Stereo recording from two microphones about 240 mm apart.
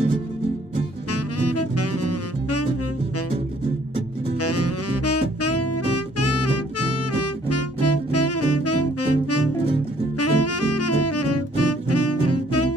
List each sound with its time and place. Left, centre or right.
1.1 s saxophone: left
4.4 s saxophone: left